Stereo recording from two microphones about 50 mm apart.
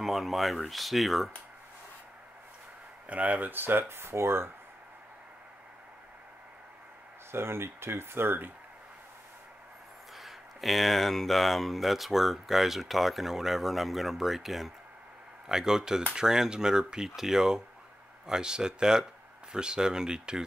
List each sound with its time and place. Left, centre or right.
0.0 s speech: centre
3.1 s speech: right
7.2 s speech: right
10.1 s speech: centre